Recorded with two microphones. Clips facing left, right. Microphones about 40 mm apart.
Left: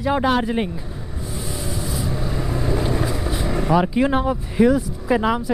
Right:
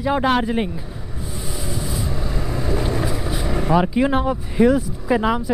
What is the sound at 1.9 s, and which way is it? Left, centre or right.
Vehicle, centre.